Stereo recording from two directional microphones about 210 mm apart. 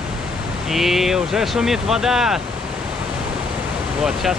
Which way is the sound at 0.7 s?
Centre (ahead or behind).